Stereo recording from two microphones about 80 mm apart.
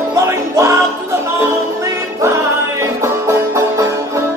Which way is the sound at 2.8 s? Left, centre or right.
Right.